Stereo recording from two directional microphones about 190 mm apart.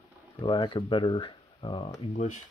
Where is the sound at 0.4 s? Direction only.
25° left (ahead or behind).